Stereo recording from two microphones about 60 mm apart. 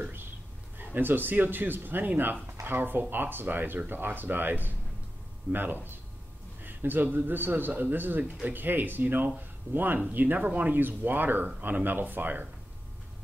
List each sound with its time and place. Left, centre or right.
0.7 s a man's voice: right